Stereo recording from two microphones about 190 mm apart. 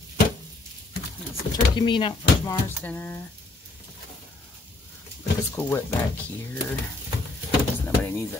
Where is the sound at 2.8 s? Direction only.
10° left (ahead or behind).